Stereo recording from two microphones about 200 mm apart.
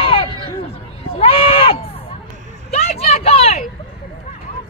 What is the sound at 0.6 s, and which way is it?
Bleat, 30° left (ahead or behind).